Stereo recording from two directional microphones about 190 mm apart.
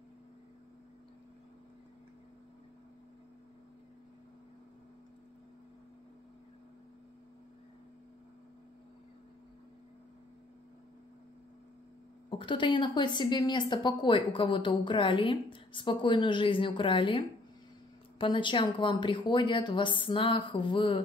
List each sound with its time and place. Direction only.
12.3 s a woman's voice: 25° left (ahead or behind)
18.2 s a woman's voice: 25° left (ahead or behind)